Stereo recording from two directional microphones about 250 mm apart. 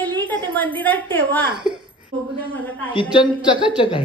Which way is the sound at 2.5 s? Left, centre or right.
Centre.